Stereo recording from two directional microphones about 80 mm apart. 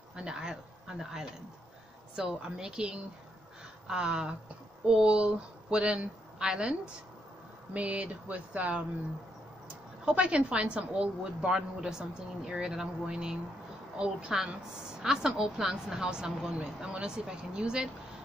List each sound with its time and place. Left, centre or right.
0.1 s a woman's voice: centre
10.0 s a woman's voice: centre